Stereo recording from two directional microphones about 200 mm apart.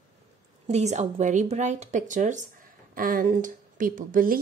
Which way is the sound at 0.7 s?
35° right (ahead or behind).